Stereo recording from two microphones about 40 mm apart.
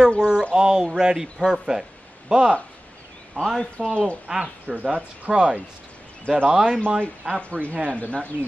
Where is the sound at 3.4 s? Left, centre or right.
Left.